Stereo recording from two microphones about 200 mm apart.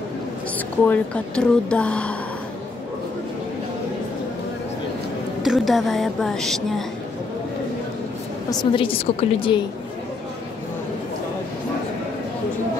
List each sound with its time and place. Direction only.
0.8 s a woman's voice: 5° left (ahead or behind)
5.4 s a woman's voice: centre (ahead or behind)
8.5 s a woman's voice: 25° left (ahead or behind)